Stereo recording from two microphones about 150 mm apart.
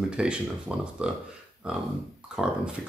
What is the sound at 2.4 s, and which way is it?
Speech, 5° right (ahead or behind).